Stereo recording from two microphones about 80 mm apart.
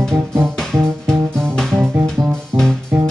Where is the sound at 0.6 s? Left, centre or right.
Centre.